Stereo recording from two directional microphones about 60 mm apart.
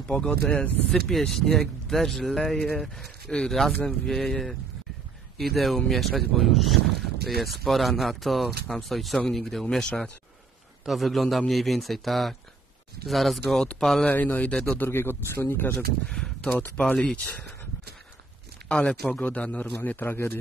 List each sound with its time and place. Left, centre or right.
0.0 s speech: centre
0.8 s speech: centre
10.9 s speech: centre
14.0 s a man's voice: left
14.9 s speech: left
16.1 s a man's voice: centre
18.7 s a man's voice: centre; by 20.2 s left